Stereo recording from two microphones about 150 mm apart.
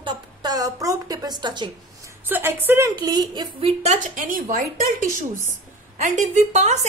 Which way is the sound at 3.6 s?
50° right (ahead or behind).